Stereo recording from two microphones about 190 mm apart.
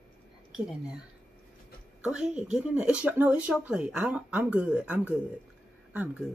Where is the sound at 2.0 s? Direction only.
5° right (ahead or behind).